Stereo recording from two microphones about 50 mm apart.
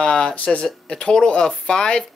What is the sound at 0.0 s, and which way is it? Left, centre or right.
Speech, centre.